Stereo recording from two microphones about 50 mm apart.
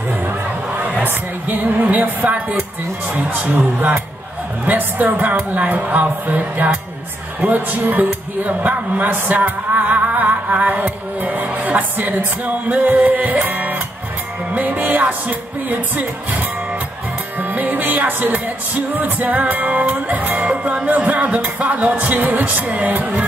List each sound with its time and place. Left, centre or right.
1.0 s music: right
7.4 s speech: right
13.5 s music: right
17.4 s music: right